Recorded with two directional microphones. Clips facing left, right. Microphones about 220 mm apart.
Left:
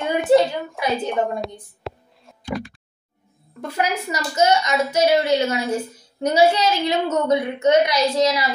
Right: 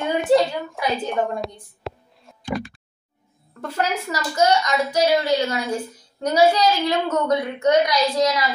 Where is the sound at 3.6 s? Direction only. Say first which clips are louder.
Left 1 dB; 15° left (ahead or behind).